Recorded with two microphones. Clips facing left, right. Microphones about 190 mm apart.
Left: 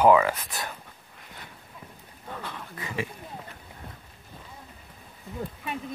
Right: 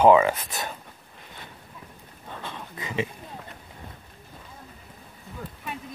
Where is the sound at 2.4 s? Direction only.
20° right (ahead or behind).